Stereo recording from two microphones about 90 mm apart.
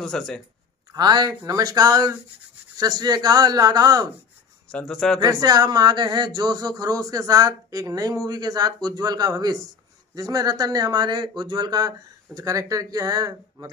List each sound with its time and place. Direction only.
0.0 s speech: 5° left (ahead or behind)
0.9 s speech: 50° right (ahead or behind)
4.6 s speech: 10° left (ahead or behind)
5.2 s speech: 45° right (ahead or behind)
12.4 s speech: 40° right (ahead or behind)